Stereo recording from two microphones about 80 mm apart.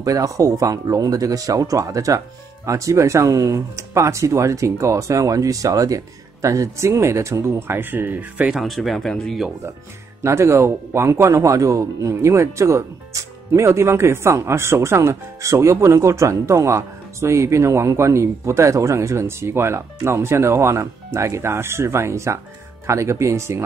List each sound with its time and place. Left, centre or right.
0.0 s speech: right
7.5 s speech: right
8.5 s speech: centre
10.2 s speech: right